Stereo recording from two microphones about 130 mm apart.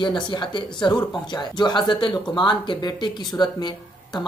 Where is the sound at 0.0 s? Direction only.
35° left (ahead or behind).